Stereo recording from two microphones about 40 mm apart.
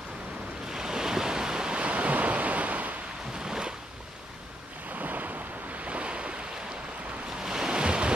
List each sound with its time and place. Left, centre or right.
0.7 s waves: centre
1.8 s waves: right
3.3 s waves: centre
4.9 s waves: right
5.9 s waves: right
7.4 s waves: centre